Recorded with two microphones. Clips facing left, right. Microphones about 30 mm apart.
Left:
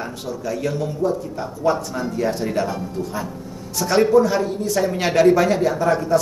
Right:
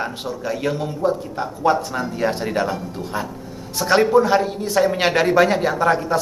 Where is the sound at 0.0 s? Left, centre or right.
Right.